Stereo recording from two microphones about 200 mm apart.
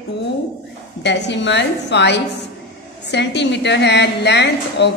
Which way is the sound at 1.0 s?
60° left (ahead or behind).